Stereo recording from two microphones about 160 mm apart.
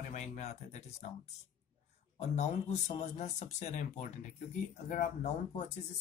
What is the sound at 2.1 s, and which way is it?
Speech, 45° left (ahead or behind).